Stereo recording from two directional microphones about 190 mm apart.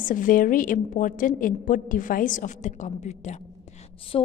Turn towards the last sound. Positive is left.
turn(degrees=30)  # may be behind; listen again after turning